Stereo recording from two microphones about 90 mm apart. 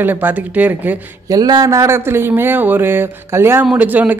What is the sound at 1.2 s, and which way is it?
Speech, 45° right (ahead or behind).